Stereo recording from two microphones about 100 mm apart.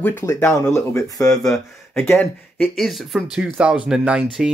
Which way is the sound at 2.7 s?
Centre (ahead or behind).